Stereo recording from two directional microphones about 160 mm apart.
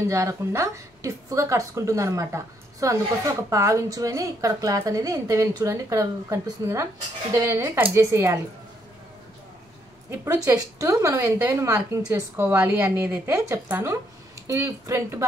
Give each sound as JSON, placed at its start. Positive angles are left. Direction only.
{"t": 0.0, "sound": "a woman's voice", "side_deg": -20}
{"t": 10.0, "sound": "a woman's voice", "side_deg": -15}